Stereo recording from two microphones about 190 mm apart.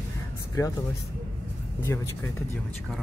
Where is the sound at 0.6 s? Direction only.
20° left (ahead or behind).